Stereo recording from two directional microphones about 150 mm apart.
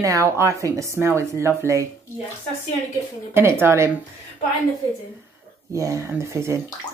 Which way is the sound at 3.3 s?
15° right (ahead or behind).